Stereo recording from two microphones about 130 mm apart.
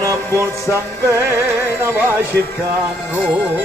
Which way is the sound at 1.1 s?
20° right (ahead or behind).